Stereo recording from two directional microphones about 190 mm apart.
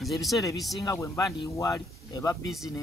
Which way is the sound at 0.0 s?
Centre (ahead or behind).